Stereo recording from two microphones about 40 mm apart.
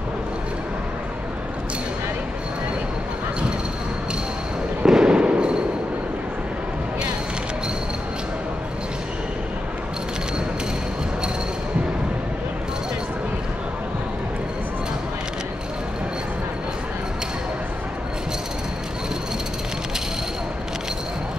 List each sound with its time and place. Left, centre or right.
4.8 s fireworks: right